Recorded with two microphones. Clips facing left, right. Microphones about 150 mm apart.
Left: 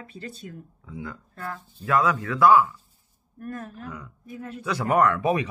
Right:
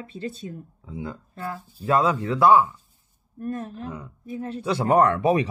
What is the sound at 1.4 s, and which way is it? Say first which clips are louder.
Speech: right 2 dB; 10° right (ahead or behind).